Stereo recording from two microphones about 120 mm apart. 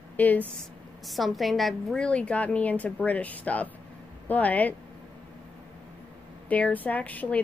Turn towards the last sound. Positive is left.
turn(degrees=15)  # may be behind; listen again after turning